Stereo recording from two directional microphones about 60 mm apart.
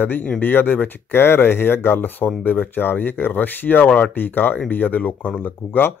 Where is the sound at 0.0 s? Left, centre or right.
Left.